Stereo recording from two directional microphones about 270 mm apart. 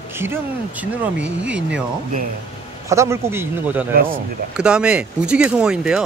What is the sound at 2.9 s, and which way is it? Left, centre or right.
Speech, centre.